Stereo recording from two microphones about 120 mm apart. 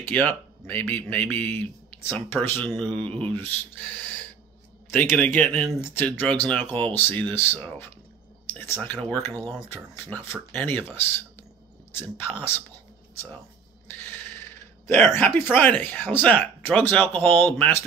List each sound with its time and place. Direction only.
0.1 s speech: 15° left (ahead or behind)
13.8 s a sound: 15° left (ahead or behind)
15.5 s speech: 15° left (ahead or behind)